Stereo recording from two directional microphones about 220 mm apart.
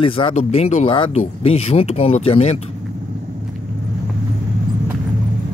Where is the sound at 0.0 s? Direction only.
25° left (ahead or behind).